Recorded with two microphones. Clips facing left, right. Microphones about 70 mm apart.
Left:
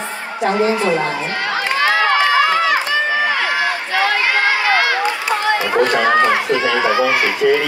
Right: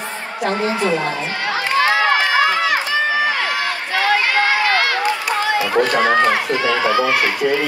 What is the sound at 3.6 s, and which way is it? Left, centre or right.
Run, left.